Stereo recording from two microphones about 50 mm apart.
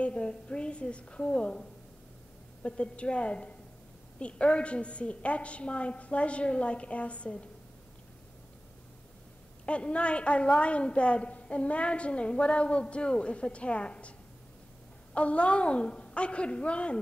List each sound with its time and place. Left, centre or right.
0.0 s a woman's voice: left
9.7 s a woman's voice: left
15.1 s a woman's voice: left